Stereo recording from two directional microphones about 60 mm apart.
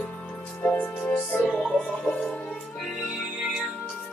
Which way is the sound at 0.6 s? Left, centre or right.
Left.